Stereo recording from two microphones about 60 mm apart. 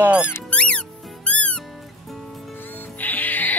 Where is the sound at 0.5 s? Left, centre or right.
Centre.